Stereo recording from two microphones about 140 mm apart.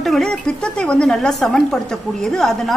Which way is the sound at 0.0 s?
Centre (ahead or behind).